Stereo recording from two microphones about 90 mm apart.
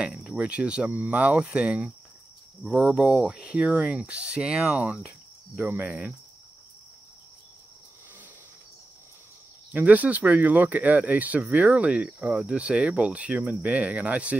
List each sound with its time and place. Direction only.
0.0 s speech: 10° right (ahead or behind)
9.8 s speech: 15° right (ahead or behind)